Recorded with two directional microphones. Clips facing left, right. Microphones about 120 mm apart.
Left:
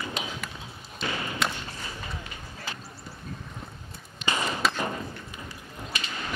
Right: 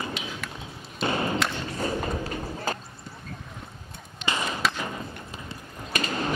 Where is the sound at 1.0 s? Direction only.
30° right (ahead or behind).